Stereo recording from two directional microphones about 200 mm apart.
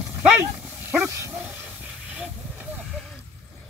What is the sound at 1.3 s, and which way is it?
Hiss, 10° right (ahead or behind).